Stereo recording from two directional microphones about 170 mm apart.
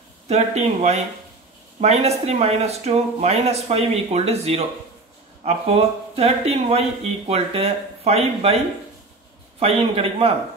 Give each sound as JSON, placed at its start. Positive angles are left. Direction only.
{"t": 0.3, "sound": "speech", "side_deg": -40}
{"t": 9.6, "sound": "speech", "side_deg": -35}